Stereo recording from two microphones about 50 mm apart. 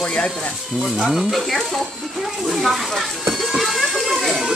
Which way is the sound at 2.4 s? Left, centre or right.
Centre.